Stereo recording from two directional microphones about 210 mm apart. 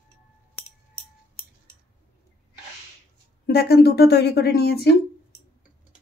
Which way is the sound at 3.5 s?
50° left (ahead or behind).